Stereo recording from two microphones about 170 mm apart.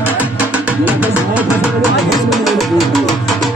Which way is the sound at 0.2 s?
10° right (ahead or behind).